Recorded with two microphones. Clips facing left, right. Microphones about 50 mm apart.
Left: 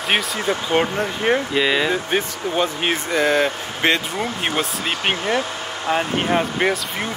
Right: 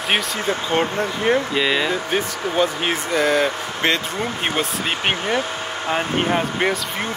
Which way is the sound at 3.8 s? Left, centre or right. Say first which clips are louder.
Left 2 dB; centre.